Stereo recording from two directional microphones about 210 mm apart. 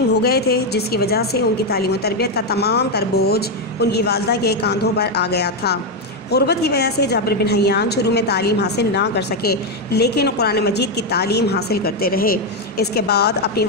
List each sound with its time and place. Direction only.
0.1 s a woman's voice: 50° left (ahead or behind)